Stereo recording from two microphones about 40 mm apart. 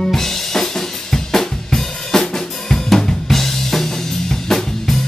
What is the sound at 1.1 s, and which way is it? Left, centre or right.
Drum kit, centre.